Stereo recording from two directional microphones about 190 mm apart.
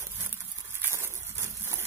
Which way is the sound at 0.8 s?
15° right (ahead or behind).